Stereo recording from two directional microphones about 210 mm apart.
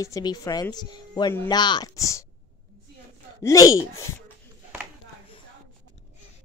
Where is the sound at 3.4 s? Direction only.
15° left (ahead or behind).